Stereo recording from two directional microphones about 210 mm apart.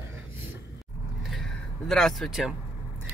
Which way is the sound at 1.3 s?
Centre (ahead or behind).